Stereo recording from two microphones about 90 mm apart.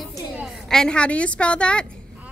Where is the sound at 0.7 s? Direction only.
10° left (ahead or behind).